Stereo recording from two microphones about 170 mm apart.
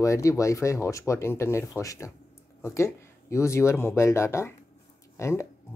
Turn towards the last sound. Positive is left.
turn(degrees=15)  # may be behind; listen again after turning